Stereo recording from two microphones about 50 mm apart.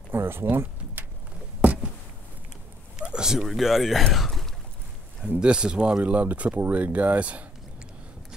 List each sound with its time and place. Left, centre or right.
0.1 s speech: right
1.6 s a sound: right
3.0 s a sound: centre
3.4 s speech: centre
5.4 s speech: centre
6.0 s speech: right